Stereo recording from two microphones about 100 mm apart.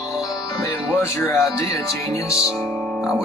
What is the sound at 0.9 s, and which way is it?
Speech, 25° left (ahead or behind).